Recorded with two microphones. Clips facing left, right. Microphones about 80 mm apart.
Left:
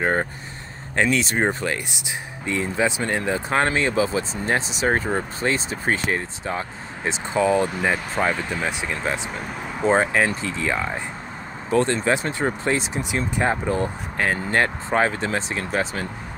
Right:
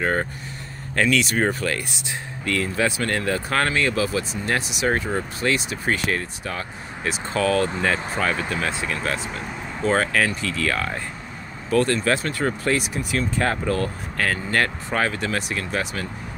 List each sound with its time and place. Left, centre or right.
0.0 s speech: left